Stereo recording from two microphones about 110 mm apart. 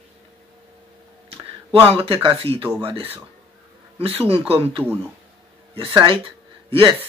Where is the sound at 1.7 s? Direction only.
55° right (ahead or behind).